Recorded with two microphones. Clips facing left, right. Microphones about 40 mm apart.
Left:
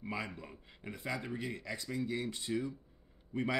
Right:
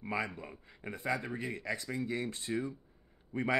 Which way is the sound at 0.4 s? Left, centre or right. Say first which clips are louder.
Right 3 dB; right.